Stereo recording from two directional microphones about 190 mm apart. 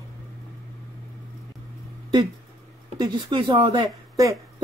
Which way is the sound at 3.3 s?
25° right (ahead or behind).